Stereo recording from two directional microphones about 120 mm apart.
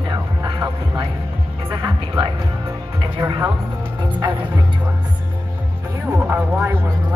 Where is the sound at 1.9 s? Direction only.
45° right (ahead or behind).